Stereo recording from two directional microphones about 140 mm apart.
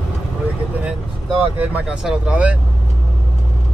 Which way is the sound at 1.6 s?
10° right (ahead or behind).